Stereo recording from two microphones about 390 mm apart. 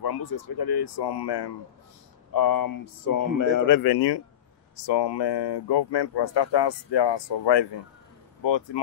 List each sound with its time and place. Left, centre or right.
0.0 s speech: left
2.3 s speech: left
4.8 s speech: left